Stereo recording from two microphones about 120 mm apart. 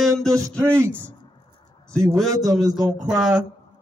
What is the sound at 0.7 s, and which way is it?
A man's voice, 20° right (ahead or behind).